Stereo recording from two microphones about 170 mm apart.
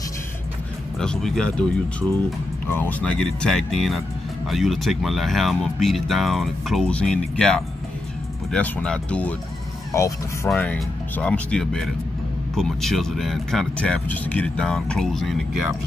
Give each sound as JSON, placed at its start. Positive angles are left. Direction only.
{"t": 0.9, "sound": "speech", "side_deg": 5}
{"t": 9.9, "sound": "speech", "side_deg": 15}